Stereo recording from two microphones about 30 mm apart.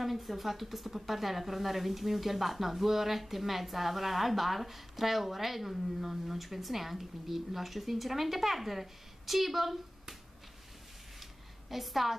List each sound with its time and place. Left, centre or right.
0.0 s speech: centre
11.7 s speech: centre